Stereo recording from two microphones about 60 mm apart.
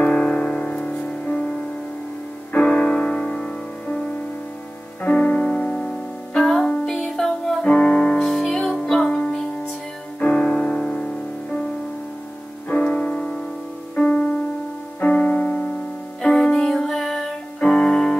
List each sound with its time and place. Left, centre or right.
0.0 s music: centre
2.5 s music: centre
5.1 s music: centre
12.6 s music: centre
16.2 s music: centre